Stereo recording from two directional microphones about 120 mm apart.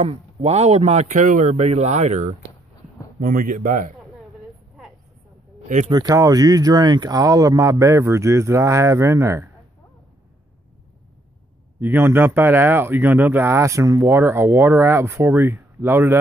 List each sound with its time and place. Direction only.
0.0 s a man's voice: 60° right (ahead or behind)
3.2 s speech: 90° right
5.9 s speech: 30° right (ahead or behind)
11.8 s speech: 20° right (ahead or behind)